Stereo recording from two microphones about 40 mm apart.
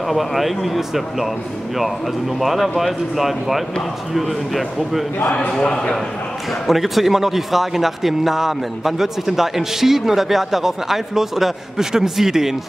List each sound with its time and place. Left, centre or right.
0.1 s speech: centre
5.5 s a man's voice: centre
6.7 s a man's voice: centre